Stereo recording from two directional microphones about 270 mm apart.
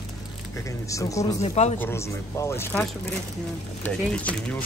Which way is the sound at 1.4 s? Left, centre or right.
Left.